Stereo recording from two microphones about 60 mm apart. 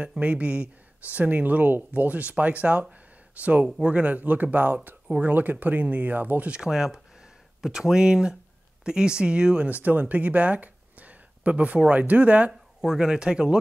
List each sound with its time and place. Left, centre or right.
0.2 s speech: right
6.5 s speech: centre
12.8 s speech: centre